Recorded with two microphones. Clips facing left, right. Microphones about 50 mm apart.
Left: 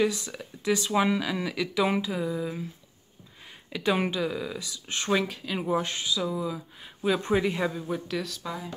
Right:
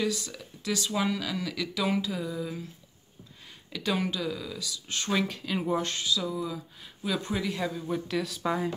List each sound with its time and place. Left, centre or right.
0.0 s speech: left
3.7 s speech: left
5.1 s speech: centre
7.0 s speech: left
7.8 s speech: centre